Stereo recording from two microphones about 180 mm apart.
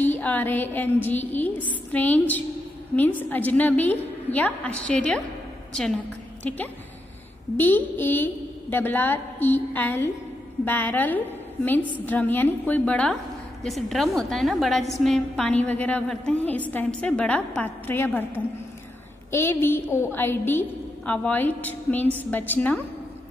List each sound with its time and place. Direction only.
0.0 s a sound: 10° left (ahead or behind)
1.0 s a woman's voice: 10° left (ahead or behind)
19.3 s a woman's voice: 15° left (ahead or behind)